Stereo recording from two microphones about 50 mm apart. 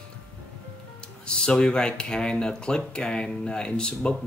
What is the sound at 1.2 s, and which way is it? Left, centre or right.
Speech, centre.